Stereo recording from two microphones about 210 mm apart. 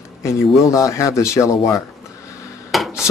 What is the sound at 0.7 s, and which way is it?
Speech, 15° left (ahead or behind).